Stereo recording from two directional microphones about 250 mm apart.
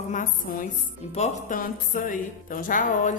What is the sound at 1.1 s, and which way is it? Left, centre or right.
Music, left.